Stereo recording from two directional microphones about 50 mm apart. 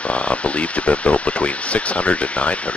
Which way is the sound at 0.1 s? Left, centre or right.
Left.